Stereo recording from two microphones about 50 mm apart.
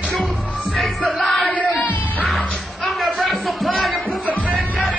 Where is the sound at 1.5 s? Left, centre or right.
Left.